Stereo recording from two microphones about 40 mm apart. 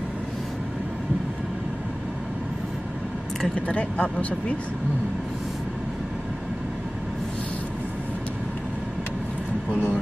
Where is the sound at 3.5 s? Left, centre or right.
Left.